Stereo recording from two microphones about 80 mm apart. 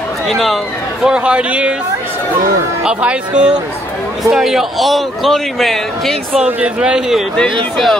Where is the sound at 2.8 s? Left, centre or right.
Centre.